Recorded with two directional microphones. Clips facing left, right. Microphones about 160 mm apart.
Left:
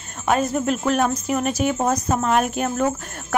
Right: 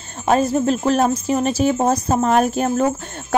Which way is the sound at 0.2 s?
30° right (ahead or behind).